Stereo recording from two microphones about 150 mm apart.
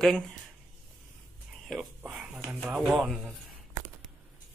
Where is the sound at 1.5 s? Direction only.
Centre (ahead or behind).